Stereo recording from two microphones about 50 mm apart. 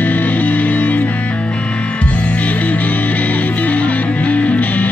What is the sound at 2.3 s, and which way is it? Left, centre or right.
Music, left.